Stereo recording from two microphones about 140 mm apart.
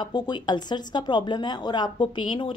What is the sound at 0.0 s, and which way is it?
Speech, 30° left (ahead or behind).